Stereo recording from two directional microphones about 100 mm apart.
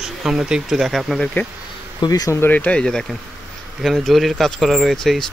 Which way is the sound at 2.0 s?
40° left (ahead or behind).